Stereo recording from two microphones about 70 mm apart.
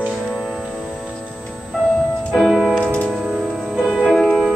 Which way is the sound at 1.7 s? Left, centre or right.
Centre.